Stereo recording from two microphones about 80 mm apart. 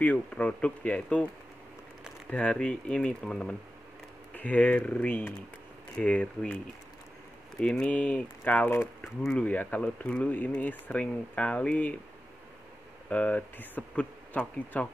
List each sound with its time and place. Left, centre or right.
0.3 s speech: centre
2.2 s speech: centre
7.6 s speech: centre
9.0 s speech: centre
9.4 s speech: centre
13.1 s speech: centre